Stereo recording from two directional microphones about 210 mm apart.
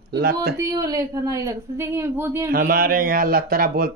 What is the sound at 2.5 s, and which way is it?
Speech, 45° right (ahead or behind).